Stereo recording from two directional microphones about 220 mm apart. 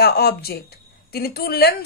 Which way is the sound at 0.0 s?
45° left (ahead or behind).